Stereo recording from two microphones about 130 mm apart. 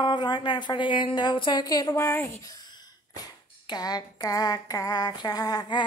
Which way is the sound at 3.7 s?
30° left (ahead or behind).